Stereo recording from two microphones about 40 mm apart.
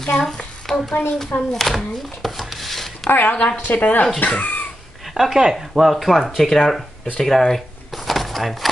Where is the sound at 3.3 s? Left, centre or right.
Left.